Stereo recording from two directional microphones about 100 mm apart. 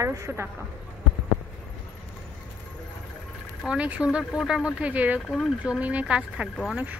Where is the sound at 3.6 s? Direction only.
10° right (ahead or behind).